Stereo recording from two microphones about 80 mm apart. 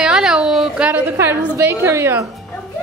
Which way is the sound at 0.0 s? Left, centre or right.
Centre.